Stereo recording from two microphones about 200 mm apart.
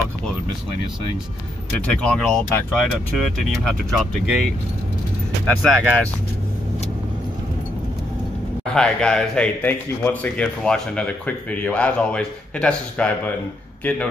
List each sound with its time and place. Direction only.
2.0 s speech: 5° left (ahead or behind)
5.6 s speech: 5° left (ahead or behind)
8.7 s speech: 5° left (ahead or behind)